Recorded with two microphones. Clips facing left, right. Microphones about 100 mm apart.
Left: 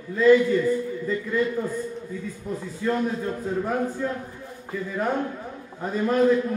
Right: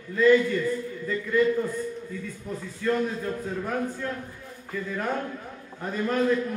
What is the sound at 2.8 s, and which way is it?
Speech, 15° left (ahead or behind).